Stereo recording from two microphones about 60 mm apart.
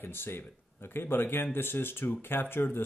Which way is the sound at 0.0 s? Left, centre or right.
Left.